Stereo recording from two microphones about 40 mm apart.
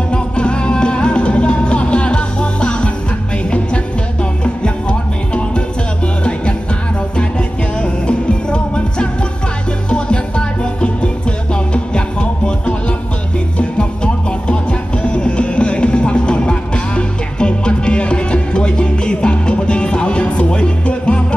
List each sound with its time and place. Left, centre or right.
0.1 s music: left
7.2 s music: left